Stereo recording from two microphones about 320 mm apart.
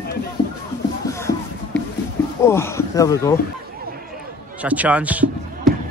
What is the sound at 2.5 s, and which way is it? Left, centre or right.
Speech, centre.